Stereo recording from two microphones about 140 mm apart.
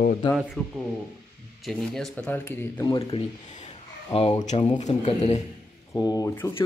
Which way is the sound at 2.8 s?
25° left (ahead or behind).